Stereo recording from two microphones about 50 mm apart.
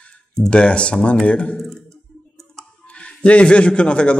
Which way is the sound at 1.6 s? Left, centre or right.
Centre.